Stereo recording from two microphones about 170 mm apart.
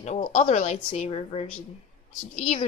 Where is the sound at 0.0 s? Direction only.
45° left (ahead or behind).